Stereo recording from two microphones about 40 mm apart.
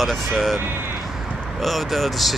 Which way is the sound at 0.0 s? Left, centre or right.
Centre.